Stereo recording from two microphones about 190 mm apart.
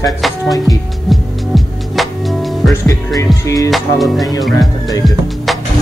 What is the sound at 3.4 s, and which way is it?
Music, 15° left (ahead or behind).